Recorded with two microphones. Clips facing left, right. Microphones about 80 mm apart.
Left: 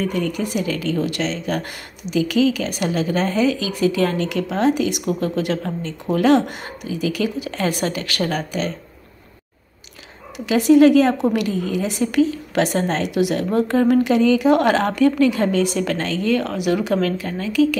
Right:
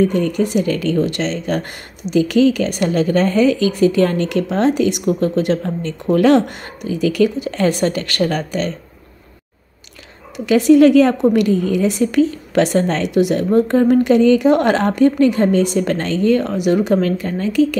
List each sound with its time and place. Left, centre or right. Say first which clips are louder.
0.1 s a woman's voice: right 5 dB; right
6.1 s a woman's voice: right 3 dB; right
10.3 s a woman's voice: right 3 dB; right
13.2 s speech: right 5 dB; right
17.2 s a woman's voice: right 3 dB; right